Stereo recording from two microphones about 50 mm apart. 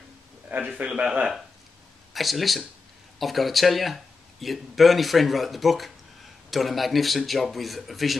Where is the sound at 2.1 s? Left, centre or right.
Centre.